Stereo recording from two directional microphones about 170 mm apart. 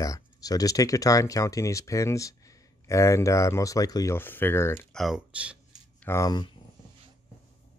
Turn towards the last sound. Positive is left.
turn(degrees=20)  # may be behind; listen again after turning